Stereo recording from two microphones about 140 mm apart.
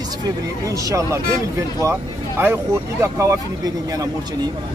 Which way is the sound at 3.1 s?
20° right (ahead or behind).